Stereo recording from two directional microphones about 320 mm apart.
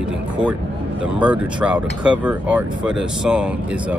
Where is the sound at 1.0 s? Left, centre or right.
Centre.